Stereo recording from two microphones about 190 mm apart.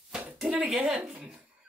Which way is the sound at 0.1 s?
5° right (ahead or behind).